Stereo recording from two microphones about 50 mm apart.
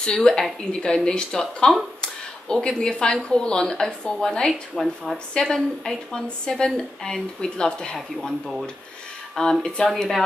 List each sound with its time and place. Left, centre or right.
0.0 s a woman's voice: centre
2.0 s a sound: centre
2.8 s a woman's voice: centre
4.7 s speech: centre
5.1 s a woman's voice: centre
7.9 s speech: centre
9.4 s a woman's voice: centre